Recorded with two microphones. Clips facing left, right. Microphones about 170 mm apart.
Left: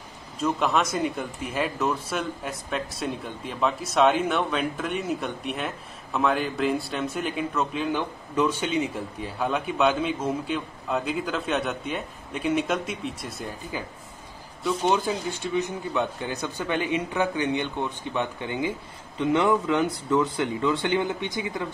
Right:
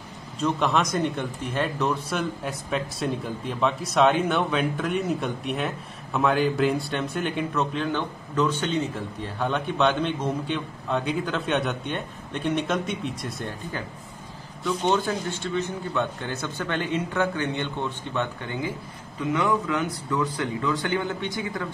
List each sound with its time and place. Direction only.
0.4 s a man's voice: 5° left (ahead or behind)
19.1 s speech: 30° left (ahead or behind)